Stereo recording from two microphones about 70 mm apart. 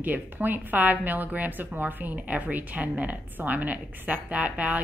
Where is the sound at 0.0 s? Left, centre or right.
Right.